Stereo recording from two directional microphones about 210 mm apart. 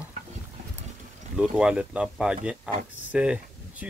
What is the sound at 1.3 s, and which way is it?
Speech, 5° right (ahead or behind).